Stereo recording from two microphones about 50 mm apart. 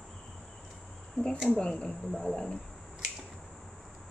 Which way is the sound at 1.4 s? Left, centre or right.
Left.